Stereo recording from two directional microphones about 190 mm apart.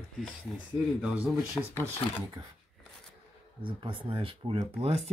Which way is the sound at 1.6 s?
20° left (ahead or behind).